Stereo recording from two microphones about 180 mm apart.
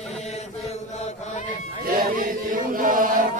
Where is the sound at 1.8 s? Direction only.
50° right (ahead or behind).